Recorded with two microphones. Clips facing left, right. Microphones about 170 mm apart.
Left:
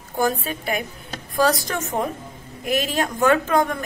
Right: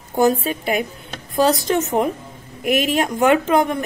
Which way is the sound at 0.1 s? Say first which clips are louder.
Right 6 dB; 20° right (ahead or behind).